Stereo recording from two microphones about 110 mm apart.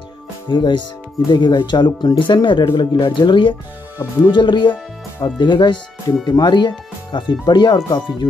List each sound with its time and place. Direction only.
0.5 s speech: 45° left (ahead or behind)